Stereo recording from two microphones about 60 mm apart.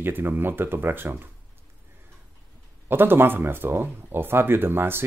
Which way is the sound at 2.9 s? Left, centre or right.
Right.